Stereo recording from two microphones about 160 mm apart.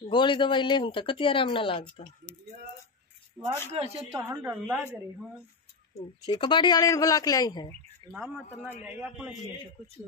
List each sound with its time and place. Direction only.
0.1 s speech: 30° left (ahead or behind)
3.7 s speech: 40° right (ahead or behind)
4.1 s speech: 15° right (ahead or behind)
6.2 s speech: 30° left (ahead or behind)
8.0 s speech: 35° right (ahead or behind)
8.8 s a man's voice: 5° right (ahead or behind)